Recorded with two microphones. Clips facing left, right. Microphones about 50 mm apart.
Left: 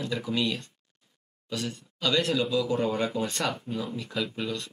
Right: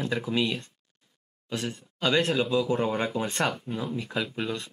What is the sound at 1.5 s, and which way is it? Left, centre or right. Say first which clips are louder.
Speech: right 1 dB; right.